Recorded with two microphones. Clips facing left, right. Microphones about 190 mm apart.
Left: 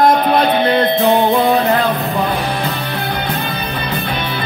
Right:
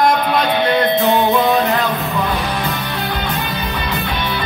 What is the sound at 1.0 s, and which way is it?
Music, 50° left (ahead or behind).